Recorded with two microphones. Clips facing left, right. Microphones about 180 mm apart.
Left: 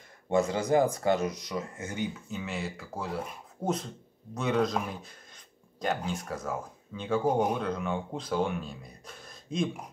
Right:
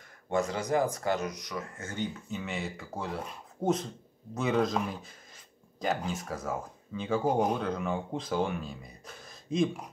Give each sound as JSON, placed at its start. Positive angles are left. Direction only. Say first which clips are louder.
{"t": 0.3, "sound": "speech", "louder": "left 3 dB", "side_deg": 25}
{"t": 2.1, "sound": "speech", "louder": "even", "side_deg": 0}